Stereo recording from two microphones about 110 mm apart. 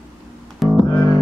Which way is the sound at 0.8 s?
35° left (ahead or behind).